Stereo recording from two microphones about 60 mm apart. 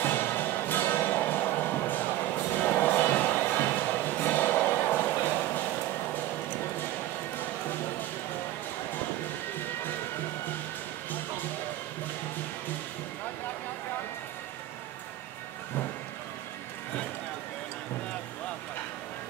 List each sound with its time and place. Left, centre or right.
0.0 s music: left